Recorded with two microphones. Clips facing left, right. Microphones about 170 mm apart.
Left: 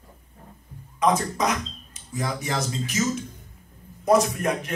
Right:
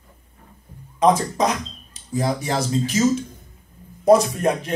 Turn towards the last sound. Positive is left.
turn(degrees=-30)  # may be behind; listen again after turning